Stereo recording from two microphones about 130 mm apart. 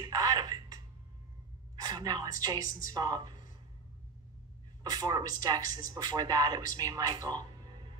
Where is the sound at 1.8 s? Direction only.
30° right (ahead or behind).